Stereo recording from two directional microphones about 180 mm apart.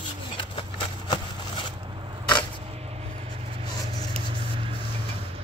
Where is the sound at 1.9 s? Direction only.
30° right (ahead or behind).